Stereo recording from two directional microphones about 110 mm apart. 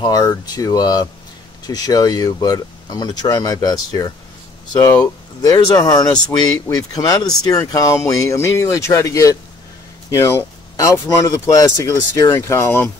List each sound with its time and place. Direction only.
0.0 s speech: 40° left (ahead or behind); by 12.9 s 20° left (ahead or behind)